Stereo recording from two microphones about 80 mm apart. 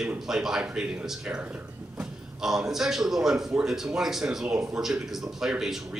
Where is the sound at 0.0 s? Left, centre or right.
Centre.